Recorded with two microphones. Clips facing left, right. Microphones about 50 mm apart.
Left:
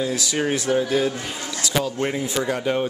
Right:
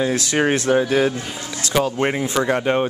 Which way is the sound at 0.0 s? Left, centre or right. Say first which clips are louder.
Right 4 dB; right.